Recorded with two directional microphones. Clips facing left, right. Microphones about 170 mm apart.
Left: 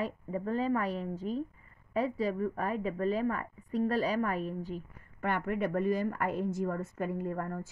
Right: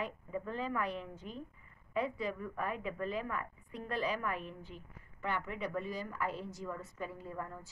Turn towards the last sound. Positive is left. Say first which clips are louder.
# left 8 dB
turn(degrees=55)  # may be behind; listen again after turning